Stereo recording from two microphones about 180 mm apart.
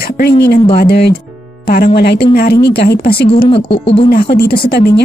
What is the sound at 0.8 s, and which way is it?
Speech, 60° left (ahead or behind).